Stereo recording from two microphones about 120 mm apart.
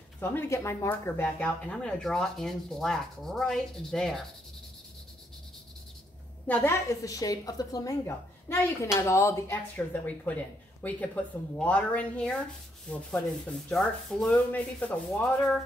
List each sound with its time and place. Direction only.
0.2 s speech: 20° left (ahead or behind); by 4.2 s 5° left (ahead or behind)
6.4 s a woman's voice: 10° left (ahead or behind)
7.0 s a woman's voice: 30° left (ahead or behind); by 15.6 s 5° left (ahead or behind)